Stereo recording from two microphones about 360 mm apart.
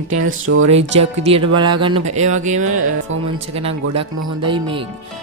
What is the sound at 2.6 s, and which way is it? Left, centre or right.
Speech, right.